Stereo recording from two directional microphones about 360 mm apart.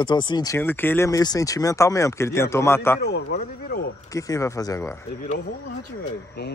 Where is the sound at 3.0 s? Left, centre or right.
Left.